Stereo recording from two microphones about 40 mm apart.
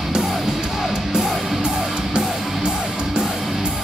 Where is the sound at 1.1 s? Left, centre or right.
Centre.